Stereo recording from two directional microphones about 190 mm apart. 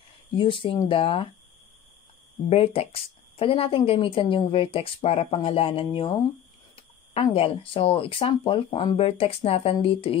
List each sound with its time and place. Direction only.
0.4 s speech: 25° left (ahead or behind)
2.5 s speech: 30° left (ahead or behind)
7.2 s speech: 30° left (ahead or behind)